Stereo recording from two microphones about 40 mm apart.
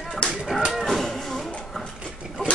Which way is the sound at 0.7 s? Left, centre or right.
Centre.